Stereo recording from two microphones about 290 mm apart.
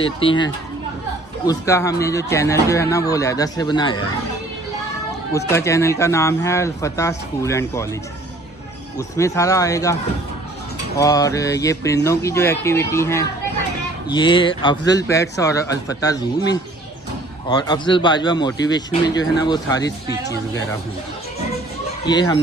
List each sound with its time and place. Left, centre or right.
0.2 s speech: centre
5.5 s speech: centre
8.9 s speech: centre
11.0 s speech: centre
22.0 s speech: centre